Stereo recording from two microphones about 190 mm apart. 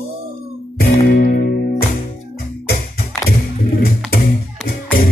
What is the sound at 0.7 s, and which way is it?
Music, 55° left (ahead or behind).